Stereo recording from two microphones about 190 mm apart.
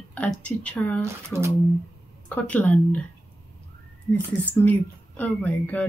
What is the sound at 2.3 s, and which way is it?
Speech, 10° left (ahead or behind).